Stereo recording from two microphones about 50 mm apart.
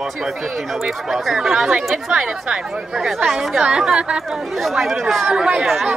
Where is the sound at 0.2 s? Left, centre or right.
Centre.